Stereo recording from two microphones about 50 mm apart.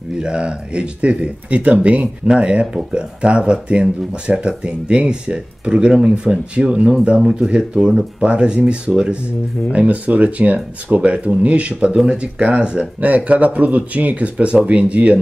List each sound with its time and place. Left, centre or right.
0.2 s speech: centre